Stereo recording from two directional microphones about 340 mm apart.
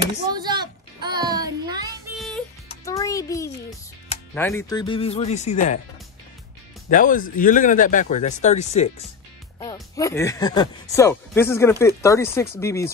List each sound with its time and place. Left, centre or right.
0.3 s child singing: centre
2.1 s music: centre
4.3 s speech: centre
6.9 s speech: left
9.6 s speech: centre